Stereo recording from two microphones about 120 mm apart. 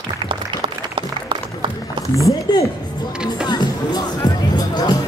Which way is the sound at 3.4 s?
35° left (ahead or behind).